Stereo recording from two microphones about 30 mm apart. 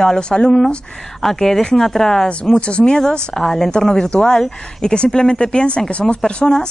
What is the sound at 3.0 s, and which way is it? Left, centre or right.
A woman's voice, centre.